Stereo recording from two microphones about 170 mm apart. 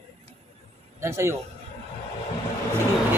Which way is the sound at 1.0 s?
15° right (ahead or behind).